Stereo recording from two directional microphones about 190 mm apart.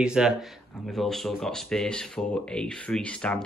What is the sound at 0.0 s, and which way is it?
Speech, 5° right (ahead or behind).